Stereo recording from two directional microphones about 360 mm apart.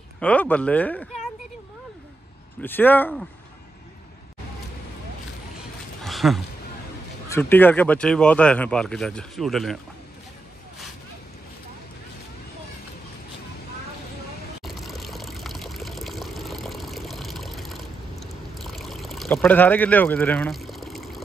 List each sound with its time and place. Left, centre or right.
0.2 s speech: centre
2.6 s speech: centre
6.0 s a sound: centre
7.2 s speech: centre
14.6 s water: centre